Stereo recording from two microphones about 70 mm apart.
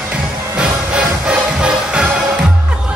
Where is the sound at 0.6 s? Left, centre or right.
Centre.